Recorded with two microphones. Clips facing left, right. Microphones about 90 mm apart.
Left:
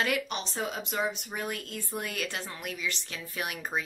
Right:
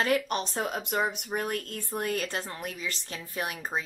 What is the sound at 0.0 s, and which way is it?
Speech, 40° right (ahead or behind).